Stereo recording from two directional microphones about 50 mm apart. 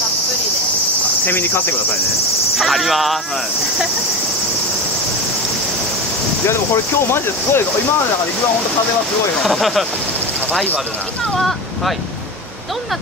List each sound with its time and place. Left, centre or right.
1.2 s speech: left
2.5 s speech: centre
6.4 s speech: left
9.4 s speech: centre
11.3 s speech: centre